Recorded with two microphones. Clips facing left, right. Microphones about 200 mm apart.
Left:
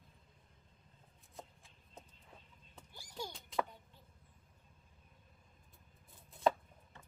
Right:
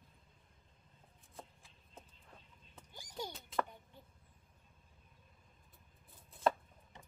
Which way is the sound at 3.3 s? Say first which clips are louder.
Left 1 dB; centre (ahead or behind).